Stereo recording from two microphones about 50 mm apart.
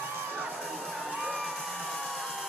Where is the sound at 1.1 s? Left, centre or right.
Right.